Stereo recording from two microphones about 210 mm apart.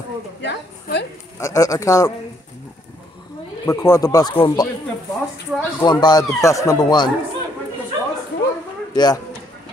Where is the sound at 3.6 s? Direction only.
15° left (ahead or behind).